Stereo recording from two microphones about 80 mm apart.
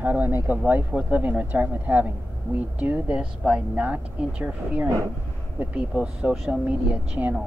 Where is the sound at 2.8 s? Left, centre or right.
Centre.